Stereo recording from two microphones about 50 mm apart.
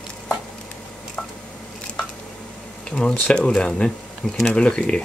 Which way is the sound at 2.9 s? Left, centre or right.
Centre.